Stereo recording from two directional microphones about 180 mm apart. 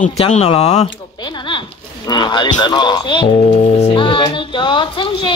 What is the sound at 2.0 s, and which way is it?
Speech, 25° left (ahead or behind).